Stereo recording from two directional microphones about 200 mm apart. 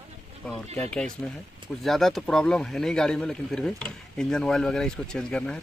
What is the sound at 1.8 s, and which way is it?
Speech, centre (ahead or behind).